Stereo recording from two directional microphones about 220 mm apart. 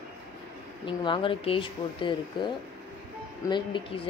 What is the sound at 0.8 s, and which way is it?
Speech, 20° left (ahead or behind).